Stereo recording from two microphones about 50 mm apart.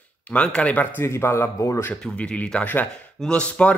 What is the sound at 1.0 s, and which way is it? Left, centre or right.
Speech, left.